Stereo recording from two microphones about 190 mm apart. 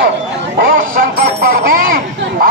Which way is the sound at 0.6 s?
50° right (ahead or behind).